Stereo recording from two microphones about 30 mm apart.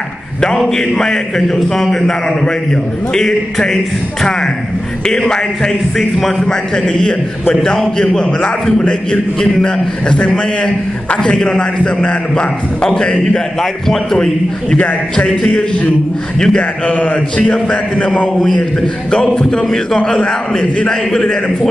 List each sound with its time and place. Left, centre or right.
0.6 s a man's voice: centre; by 8.5 s left
9.6 s a man's voice: left
15.1 s a man's voice: left
16.3 s a man's voice: left
16.8 s mantra: left
18.4 s a man's voice: left
20.0 s a man's voice: left
20.9 s a man's voice: centre